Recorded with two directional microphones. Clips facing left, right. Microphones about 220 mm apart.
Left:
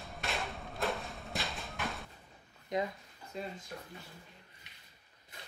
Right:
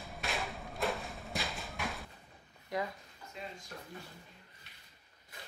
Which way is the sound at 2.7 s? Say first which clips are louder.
Left 3 dB; 20° left (ahead or behind).